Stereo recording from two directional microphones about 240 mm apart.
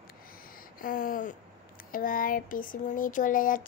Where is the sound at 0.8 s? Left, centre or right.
Left.